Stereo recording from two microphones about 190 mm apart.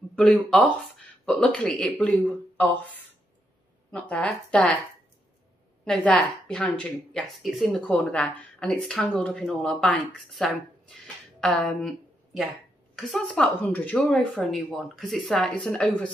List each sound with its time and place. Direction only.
0.1 s speech: 5° left (ahead or behind)
4.1 s speech: 5° left (ahead or behind)
5.9 s speech: 5° left (ahead or behind)
12.9 s speech: centre (ahead or behind)